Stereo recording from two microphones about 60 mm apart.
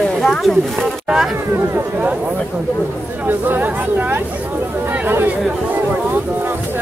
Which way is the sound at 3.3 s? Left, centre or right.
Right.